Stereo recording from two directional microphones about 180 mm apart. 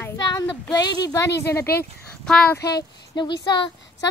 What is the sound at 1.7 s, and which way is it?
Speech, 10° left (ahead or behind).